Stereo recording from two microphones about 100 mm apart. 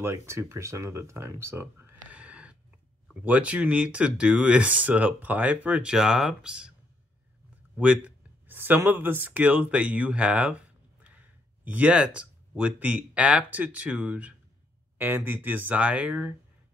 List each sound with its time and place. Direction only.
0.0 s speech: 25° right (ahead or behind)
1.4 s a sound: 25° right (ahead or behind)
3.1 s speech: 15° right (ahead or behind)
7.7 s speech: 15° right (ahead or behind)